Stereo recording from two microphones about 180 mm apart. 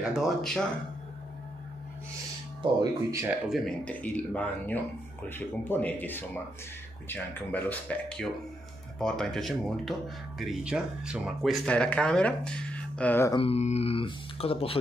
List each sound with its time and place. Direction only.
0.0 s speech: centre (ahead or behind)
2.6 s speech: 20° right (ahead or behind)
3.4 s speech: centre (ahead or behind)
13.4 s speech: 35° left (ahead or behind)